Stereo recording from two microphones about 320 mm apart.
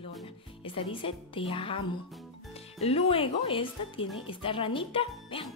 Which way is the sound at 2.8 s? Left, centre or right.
Centre.